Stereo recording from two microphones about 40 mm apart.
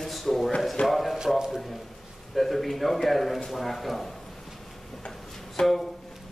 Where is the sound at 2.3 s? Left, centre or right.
Centre.